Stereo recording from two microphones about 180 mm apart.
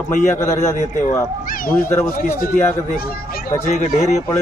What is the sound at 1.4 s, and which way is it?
Cat, 50° left (ahead or behind).